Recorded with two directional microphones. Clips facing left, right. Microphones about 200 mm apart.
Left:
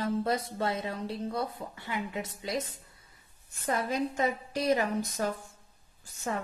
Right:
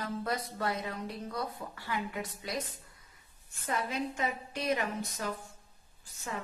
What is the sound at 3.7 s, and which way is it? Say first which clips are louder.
A woman's voice: left 4 dB; 40° left (ahead or behind).